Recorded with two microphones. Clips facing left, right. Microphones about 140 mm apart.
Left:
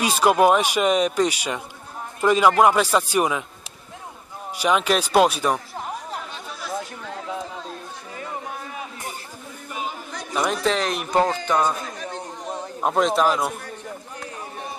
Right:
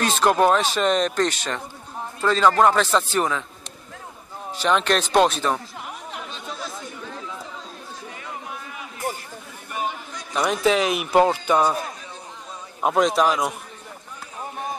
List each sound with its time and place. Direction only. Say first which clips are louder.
0.0 s speech: left 1 dB; 10° left (ahead or behind)
4.6 s speech: even; 10° left (ahead or behind)
5.8 s chatter: left 4 dB; 40° left (ahead or behind)
6.8 s chatter: left 2 dB; 70° left (ahead or behind)
10.3 s speech: right 2 dB; centre (ahead or behind)
12.0 s chatter: left 7 dB; 75° left (ahead or behind)
12.8 s a man's voice: right 1 dB; centre (ahead or behind)